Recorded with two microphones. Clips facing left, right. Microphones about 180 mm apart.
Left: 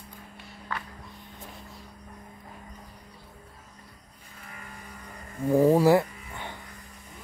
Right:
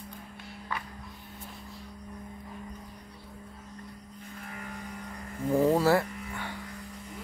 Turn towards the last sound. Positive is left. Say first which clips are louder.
# right 2 dB
turn(degrees=20)  # may be behind; listen again after turning